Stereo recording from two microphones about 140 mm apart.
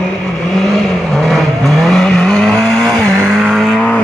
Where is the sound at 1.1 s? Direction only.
Centre (ahead or behind).